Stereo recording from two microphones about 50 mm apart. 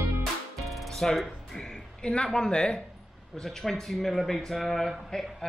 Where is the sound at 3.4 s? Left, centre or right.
Centre.